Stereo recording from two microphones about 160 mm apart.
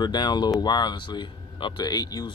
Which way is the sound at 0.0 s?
25° left (ahead or behind).